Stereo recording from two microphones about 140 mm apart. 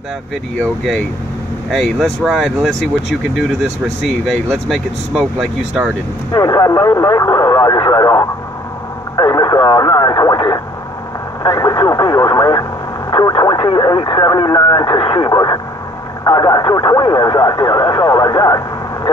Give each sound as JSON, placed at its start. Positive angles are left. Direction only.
{"t": 0.6, "sound": "speech", "side_deg": 5}
{"t": 4.6, "sound": "speech", "side_deg": 0}
{"t": 6.3, "sound": "speech", "side_deg": 30}